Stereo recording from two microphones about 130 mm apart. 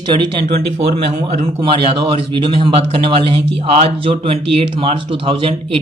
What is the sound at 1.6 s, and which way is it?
Speech, 40° right (ahead or behind).